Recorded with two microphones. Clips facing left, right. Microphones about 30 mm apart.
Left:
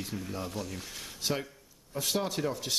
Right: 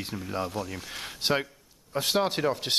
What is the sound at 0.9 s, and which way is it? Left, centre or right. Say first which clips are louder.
Speech: right 8 dB; right.